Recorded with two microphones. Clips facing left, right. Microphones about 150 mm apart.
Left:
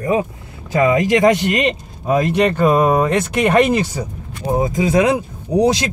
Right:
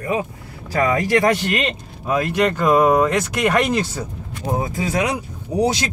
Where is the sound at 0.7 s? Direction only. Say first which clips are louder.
Left 3 dB; 20° left (ahead or behind).